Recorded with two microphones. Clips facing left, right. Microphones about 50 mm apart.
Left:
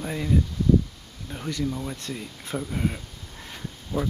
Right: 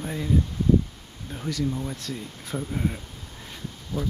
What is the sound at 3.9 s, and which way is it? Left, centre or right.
Speech, left.